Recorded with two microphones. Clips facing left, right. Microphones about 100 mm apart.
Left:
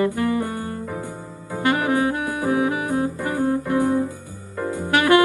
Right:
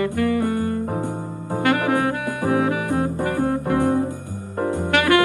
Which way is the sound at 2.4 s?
55° right (ahead or behind).